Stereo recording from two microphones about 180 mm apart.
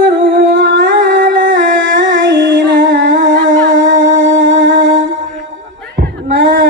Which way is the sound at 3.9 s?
90° right.